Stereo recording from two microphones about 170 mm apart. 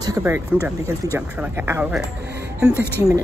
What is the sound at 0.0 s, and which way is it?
Speech, 15° right (ahead or behind).